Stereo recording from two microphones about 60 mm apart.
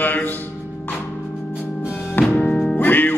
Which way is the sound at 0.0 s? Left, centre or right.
Left.